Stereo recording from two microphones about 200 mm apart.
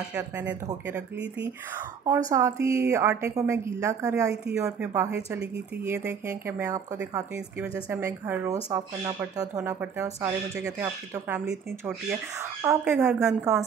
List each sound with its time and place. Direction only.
0.1 s speech: 5° right (ahead or behind)